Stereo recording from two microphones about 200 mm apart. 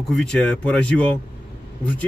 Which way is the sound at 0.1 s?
5° left (ahead or behind).